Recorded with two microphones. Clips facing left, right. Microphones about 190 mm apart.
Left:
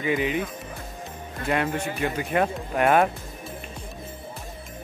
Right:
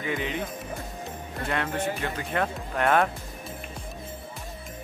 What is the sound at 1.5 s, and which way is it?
Speech, 15° left (ahead or behind).